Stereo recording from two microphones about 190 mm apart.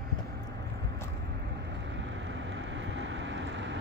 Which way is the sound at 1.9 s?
75° right (ahead or behind).